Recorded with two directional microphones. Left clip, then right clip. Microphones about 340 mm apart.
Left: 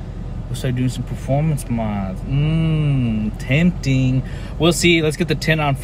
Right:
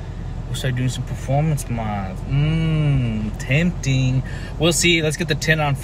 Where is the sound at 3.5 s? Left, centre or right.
Centre.